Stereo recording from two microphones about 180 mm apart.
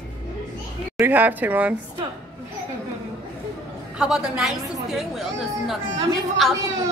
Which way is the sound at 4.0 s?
5° right (ahead or behind).